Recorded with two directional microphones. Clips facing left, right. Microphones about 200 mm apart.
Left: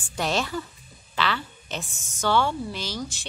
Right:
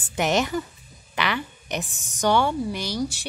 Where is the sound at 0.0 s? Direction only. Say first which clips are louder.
Right 4 dB; 20° right (ahead or behind).